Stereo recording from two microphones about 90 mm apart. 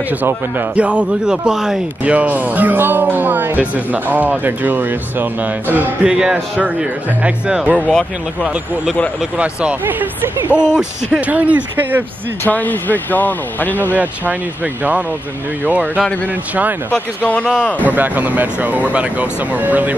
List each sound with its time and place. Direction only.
0.2 s speech: 20° right (ahead or behind)
6.0 s speech: 10° right (ahead or behind)
7.9 s speech: 10° left (ahead or behind)
9.4 s speech: 15° right (ahead or behind)
12.4 s speech: 20° left (ahead or behind)
13.9 s speech: 20° right (ahead or behind)
16.9 s speech: 15° left (ahead or behind)
17.8 s speech: 20° right (ahead or behind)